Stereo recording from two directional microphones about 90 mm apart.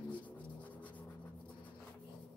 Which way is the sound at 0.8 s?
15° left (ahead or behind).